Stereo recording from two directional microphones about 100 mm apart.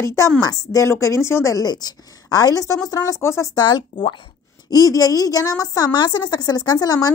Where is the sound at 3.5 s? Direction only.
45° left (ahead or behind).